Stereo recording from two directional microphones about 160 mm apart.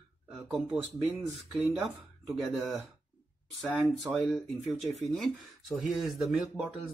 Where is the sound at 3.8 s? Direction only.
10° left (ahead or behind).